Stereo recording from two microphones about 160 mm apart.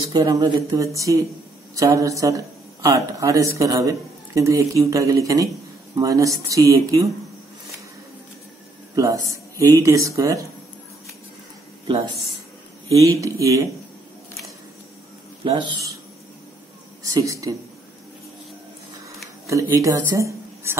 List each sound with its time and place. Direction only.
0.1 s speech: 25° right (ahead or behind)
8.9 s speech: 20° right (ahead or behind)
12.9 s speech: 20° right (ahead or behind)
15.4 s speech: 30° right (ahead or behind)
17.1 s speech: 20° right (ahead or behind)
19.4 s speech: 20° right (ahead or behind)